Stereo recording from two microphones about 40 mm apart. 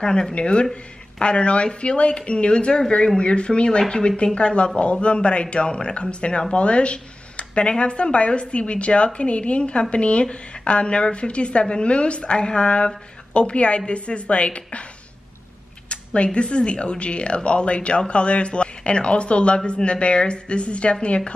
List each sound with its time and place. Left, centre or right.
0.0 s speech: centre
15.9 s a sound: left
16.3 s speech: left